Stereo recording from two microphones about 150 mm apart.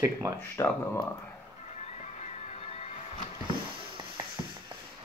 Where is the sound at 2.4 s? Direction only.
45° left (ahead or behind).